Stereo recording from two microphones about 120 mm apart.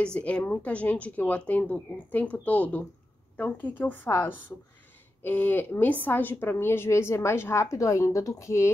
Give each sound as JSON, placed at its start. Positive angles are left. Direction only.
{"t": 0.0, "sound": "a woman's voice", "side_deg": 10}